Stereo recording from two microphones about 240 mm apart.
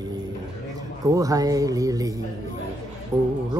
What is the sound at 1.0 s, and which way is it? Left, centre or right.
Speech, centre.